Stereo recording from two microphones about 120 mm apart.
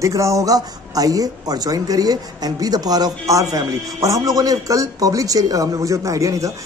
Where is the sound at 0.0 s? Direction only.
25° right (ahead or behind).